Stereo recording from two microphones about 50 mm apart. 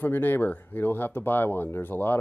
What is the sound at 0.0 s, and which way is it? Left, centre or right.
Speech, left.